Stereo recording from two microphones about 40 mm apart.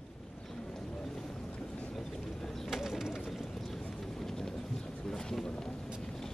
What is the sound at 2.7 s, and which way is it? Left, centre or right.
Bird, centre.